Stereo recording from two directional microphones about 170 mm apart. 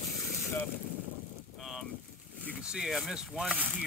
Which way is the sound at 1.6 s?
Centre (ahead or behind).